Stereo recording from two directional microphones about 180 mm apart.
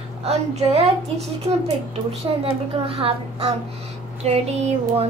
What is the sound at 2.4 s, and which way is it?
A woman's voice, 30° right (ahead or behind).